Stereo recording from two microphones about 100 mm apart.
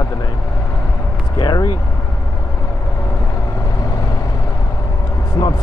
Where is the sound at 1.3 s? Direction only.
40° left (ahead or behind).